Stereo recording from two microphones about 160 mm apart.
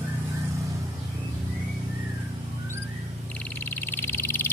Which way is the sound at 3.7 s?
10° left (ahead or behind).